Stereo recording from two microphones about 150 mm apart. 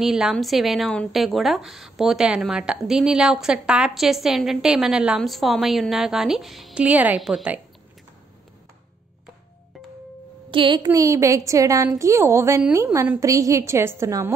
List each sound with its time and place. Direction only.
0.0 s a woman's voice: centre (ahead or behind)
10.5 s a woman's voice: 35° right (ahead or behind)